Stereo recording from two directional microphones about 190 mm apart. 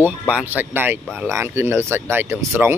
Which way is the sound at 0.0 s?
10° right (ahead or behind).